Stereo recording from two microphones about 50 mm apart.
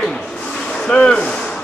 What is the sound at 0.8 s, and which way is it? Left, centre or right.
Speech, centre.